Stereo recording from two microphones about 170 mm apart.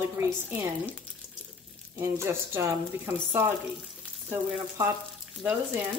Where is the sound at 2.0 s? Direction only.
15° right (ahead or behind).